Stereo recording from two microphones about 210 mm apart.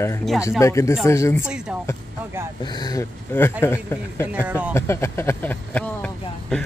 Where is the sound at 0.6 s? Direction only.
15° left (ahead or behind).